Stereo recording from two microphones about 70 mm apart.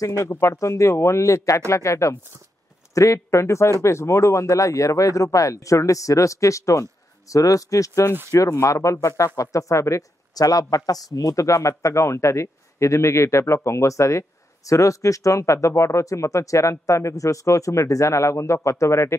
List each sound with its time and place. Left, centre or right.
0.2 s speech: left
10.3 s speech: left